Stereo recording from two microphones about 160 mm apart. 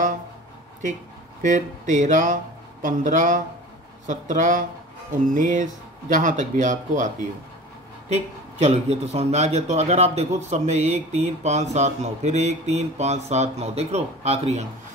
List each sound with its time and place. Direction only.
1.4 s a man's voice: 50° right (ahead or behind)
8.6 s a man's voice: 40° right (ahead or behind)